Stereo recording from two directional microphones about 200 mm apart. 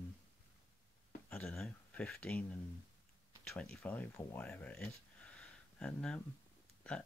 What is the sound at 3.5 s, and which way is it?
Speech, 5° left (ahead or behind).